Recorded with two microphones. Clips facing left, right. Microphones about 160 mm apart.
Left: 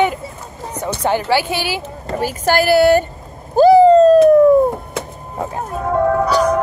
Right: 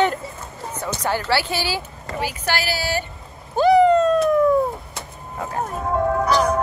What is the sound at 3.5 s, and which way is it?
Bird, 35° left (ahead or behind).